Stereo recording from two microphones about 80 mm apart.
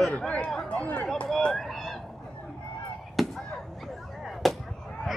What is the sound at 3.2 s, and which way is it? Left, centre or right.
Chop, centre.